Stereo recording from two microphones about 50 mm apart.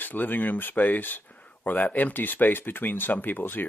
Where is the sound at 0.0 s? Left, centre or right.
Left.